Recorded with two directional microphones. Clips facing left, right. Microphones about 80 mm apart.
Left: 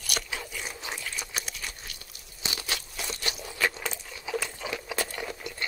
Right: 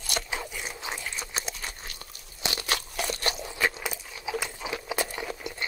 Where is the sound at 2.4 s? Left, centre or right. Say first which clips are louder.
Right 4 dB; right.